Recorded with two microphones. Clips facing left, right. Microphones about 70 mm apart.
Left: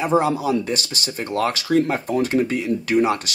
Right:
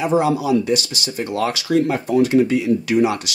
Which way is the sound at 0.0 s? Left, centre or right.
Left.